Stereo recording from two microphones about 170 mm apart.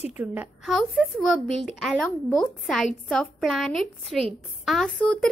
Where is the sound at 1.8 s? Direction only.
5° left (ahead or behind).